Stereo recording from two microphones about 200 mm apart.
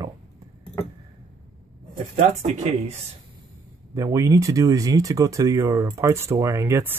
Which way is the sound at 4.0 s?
15° right (ahead or behind).